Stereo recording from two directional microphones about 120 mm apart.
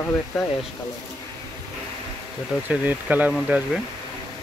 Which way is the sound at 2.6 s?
15° right (ahead or behind).